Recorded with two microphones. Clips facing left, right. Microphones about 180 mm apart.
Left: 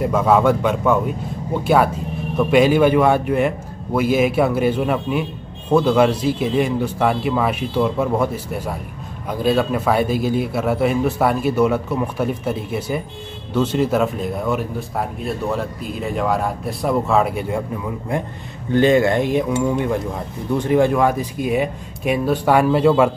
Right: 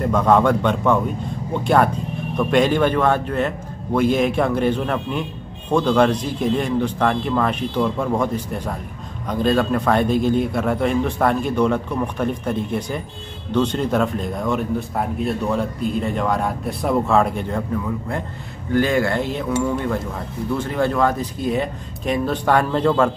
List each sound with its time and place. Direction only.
0.0 s a man's voice: 5° left (ahead or behind)